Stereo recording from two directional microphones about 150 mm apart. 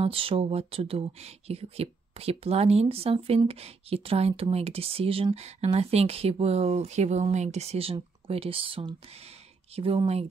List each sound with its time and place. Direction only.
0.0 s speech: 40° right (ahead or behind)